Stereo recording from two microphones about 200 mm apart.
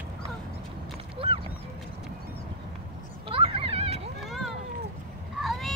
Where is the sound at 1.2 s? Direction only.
25° right (ahead or behind).